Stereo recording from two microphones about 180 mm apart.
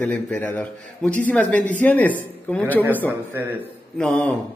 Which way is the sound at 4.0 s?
Centre (ahead or behind).